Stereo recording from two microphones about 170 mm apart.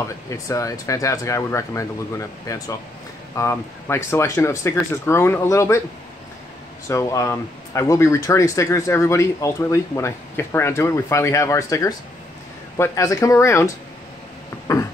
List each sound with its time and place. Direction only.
0.3 s speech: 20° left (ahead or behind)
6.9 s speech: 20° left (ahead or behind)
14.7 s a sound: 20° left (ahead or behind)